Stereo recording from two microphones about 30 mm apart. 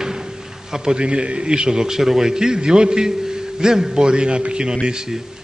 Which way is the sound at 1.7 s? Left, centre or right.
Centre.